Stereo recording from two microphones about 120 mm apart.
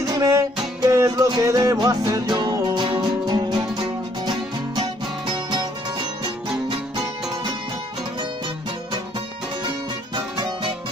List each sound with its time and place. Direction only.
0.0 s music: 30° right (ahead or behind)